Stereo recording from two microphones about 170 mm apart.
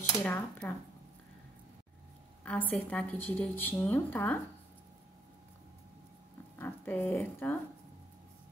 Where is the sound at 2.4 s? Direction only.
10° left (ahead or behind).